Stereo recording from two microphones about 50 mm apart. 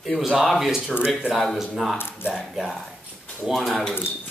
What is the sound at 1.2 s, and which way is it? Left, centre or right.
Speech, centre.